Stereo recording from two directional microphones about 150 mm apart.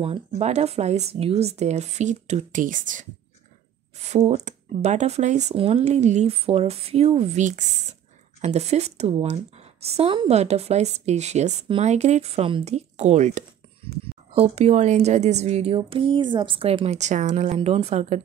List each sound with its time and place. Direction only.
0.3 s a woman's voice: 45° right (ahead or behind)
4.0 s a woman's voice: 50° right (ahead or behind)
12.7 s a woman's voice: 50° right (ahead or behind)
17.6 s a woman's voice: 45° right (ahead or behind)